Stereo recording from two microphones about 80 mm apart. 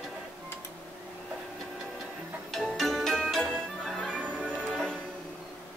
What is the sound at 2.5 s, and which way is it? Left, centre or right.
Music, centre.